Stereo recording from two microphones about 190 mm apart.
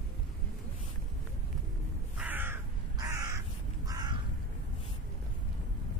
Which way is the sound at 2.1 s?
10° right (ahead or behind).